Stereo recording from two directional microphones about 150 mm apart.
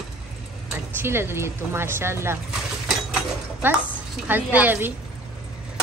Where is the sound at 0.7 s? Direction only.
15° right (ahead or behind).